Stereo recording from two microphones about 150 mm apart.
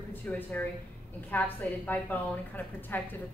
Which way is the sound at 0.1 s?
10° left (ahead or behind).